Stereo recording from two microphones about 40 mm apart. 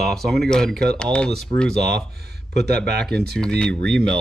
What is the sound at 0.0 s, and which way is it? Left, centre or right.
Speech, centre.